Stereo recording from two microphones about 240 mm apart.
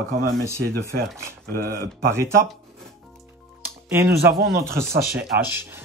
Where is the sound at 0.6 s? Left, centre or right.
Right.